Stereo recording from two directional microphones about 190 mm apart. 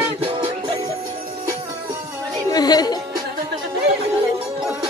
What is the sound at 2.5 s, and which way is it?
Music, 20° left (ahead or behind).